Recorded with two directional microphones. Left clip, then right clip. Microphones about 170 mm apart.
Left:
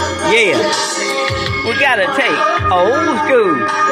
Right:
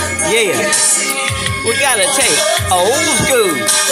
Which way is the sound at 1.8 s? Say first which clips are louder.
Left 2 dB; 20° right (ahead or behind).